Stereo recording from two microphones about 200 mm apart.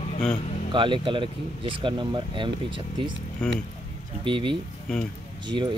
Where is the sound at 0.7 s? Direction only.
25° right (ahead or behind).